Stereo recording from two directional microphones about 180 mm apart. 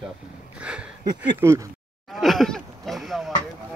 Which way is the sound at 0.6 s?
5° right (ahead or behind).